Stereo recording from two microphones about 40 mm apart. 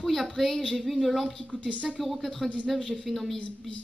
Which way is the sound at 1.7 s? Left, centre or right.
Left.